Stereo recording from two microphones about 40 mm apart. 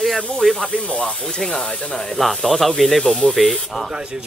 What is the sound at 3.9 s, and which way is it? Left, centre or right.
Speech, right.